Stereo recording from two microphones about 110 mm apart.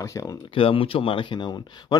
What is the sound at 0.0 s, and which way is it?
Speech, 30° left (ahead or behind).